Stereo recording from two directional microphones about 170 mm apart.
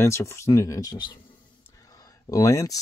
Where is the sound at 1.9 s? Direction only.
20° left (ahead or behind).